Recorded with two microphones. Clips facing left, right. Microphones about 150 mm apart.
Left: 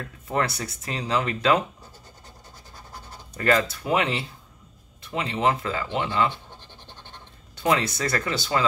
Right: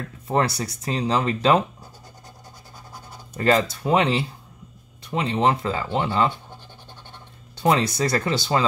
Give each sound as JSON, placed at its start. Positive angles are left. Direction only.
{"t": 0.3, "sound": "speech", "side_deg": -35}
{"t": 3.3, "sound": "speech", "side_deg": -30}
{"t": 7.5, "sound": "speech", "side_deg": -35}